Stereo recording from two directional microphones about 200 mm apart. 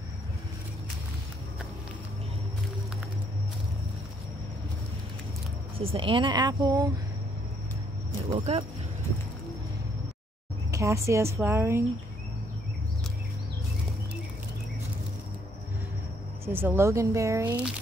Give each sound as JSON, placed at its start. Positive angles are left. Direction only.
{"t": 5.8, "sound": "speech", "side_deg": -25}
{"t": 8.4, "sound": "speech", "side_deg": -30}
{"t": 10.7, "sound": "a woman's voice", "side_deg": -15}
{"t": 16.5, "sound": "a woman's voice", "side_deg": -10}